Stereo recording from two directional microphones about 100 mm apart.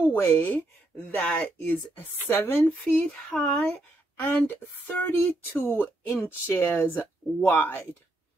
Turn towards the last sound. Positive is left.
turn(degrees=20)  # may be behind; listen again after turning